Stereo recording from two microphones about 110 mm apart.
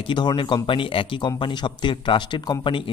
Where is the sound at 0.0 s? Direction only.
45° left (ahead or behind).